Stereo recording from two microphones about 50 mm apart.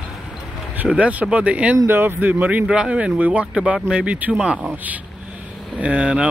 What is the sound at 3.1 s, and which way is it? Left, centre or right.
Speech, right.